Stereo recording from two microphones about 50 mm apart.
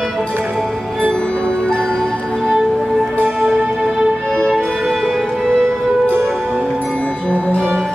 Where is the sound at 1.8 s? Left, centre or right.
Centre.